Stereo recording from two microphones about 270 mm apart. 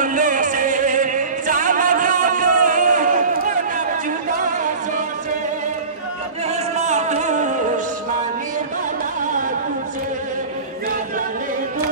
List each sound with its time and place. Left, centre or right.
0.0 s music: right
6.5 s music: right